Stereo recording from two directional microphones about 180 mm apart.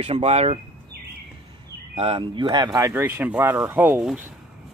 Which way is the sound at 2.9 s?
10° right (ahead or behind).